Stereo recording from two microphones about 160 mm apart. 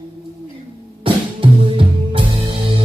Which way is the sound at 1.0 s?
30° right (ahead or behind).